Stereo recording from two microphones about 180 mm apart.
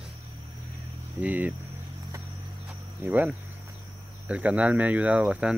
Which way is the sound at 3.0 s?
10° right (ahead or behind).